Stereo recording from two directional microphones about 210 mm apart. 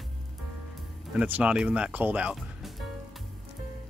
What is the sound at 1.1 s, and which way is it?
Speech, 5° right (ahead or behind).